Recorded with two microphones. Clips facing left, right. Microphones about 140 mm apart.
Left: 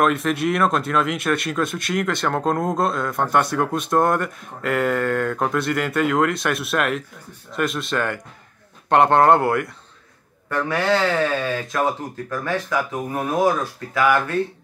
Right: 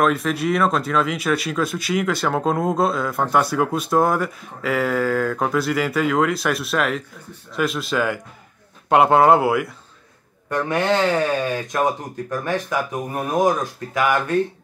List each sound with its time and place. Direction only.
0.0 s speech: centre (ahead or behind)
10.5 s speech: 20° right (ahead or behind)